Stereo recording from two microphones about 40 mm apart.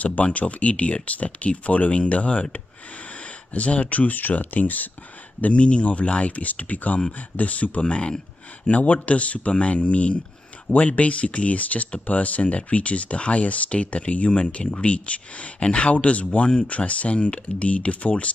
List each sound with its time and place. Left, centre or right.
0.0 s speech: left
5.4 s speech: left
7.9 s speech: left
8.6 s speech: left